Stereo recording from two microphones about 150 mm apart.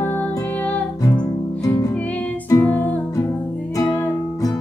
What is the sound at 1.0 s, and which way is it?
Music, 25° left (ahead or behind).